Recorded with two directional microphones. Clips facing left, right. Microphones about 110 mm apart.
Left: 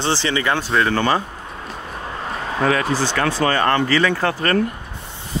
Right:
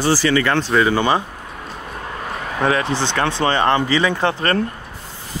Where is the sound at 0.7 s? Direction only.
Centre (ahead or behind).